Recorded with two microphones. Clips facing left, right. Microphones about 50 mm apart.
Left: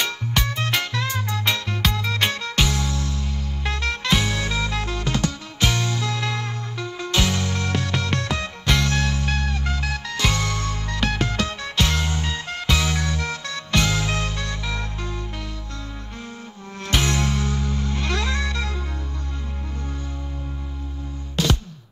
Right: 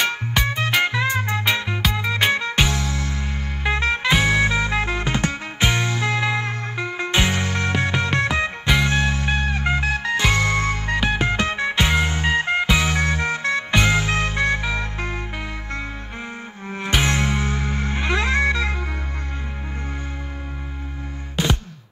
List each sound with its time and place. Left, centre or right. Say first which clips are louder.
0.4 s music: right 4 dB; centre
11.0 s music: right 1 dB; centre
12.9 s music: right 5 dB; right
17.0 s music: right 2 dB; right
21.4 s music: even; centre